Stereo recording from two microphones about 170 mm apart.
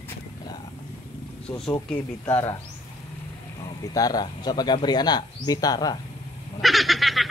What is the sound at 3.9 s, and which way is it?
Speech, 20° left (ahead or behind).